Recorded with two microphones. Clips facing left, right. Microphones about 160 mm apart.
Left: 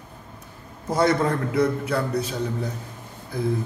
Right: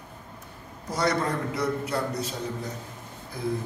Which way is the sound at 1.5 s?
60° left (ahead or behind).